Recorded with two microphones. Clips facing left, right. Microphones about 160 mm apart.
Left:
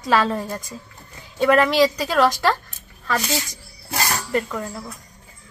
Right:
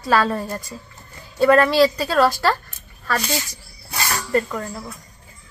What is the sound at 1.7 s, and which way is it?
Speech, 15° left (ahead or behind).